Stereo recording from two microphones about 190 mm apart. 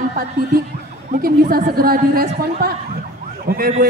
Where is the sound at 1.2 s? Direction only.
50° right (ahead or behind).